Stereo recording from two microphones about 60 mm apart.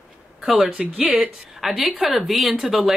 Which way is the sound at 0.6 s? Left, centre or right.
Centre.